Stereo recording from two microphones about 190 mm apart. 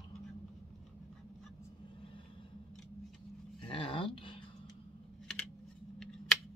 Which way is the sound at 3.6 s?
25° left (ahead or behind).